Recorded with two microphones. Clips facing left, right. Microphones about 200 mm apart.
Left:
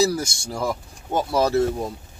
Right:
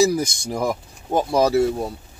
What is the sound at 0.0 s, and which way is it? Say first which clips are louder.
Speech: right 3 dB; 15° right (ahead or behind).